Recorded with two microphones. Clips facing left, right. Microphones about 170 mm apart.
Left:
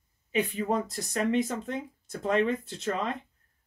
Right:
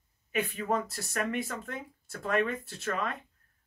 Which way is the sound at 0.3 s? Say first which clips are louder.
Left 3 dB; 20° left (ahead or behind).